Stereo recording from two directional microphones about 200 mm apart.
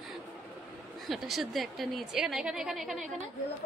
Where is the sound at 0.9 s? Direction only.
Centre (ahead or behind).